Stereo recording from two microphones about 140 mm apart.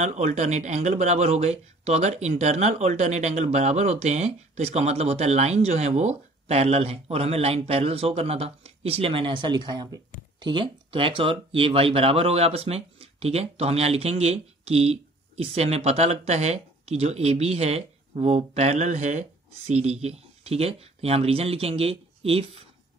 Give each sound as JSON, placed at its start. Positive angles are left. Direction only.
{"t": 0.0, "sound": "speech", "side_deg": -55}